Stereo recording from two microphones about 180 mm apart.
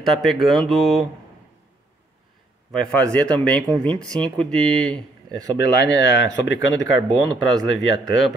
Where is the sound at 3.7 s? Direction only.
20° right (ahead or behind).